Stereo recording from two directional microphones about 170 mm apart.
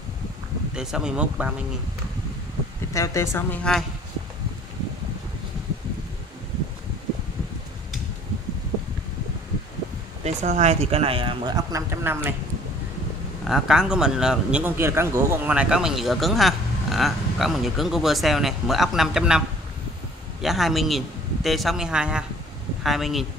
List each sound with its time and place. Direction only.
0.7 s speech: 5° right (ahead or behind)
2.9 s a woman's voice: 20° left (ahead or behind)
10.2 s speech: 40° right (ahead or behind); by 12.4 s 15° right (ahead or behind)
13.5 s speech: 5° right (ahead or behind)
20.4 s speech: centre (ahead or behind)